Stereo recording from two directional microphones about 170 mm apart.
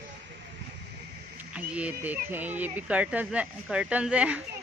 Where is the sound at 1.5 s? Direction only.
5° right (ahead or behind).